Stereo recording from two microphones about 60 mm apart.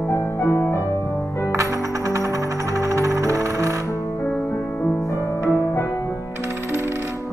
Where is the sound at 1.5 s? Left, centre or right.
Right.